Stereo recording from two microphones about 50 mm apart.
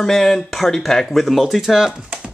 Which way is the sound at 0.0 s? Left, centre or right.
Centre.